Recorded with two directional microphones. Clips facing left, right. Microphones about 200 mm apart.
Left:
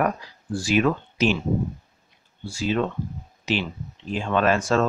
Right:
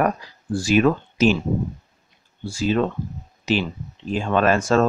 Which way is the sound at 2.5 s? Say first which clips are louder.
Right 3 dB; 45° right (ahead or behind).